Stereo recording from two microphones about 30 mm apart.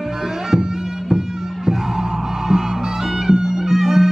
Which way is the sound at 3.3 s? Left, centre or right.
Right.